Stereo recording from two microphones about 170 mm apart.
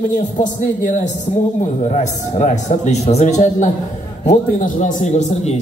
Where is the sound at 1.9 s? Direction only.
40° left (ahead or behind).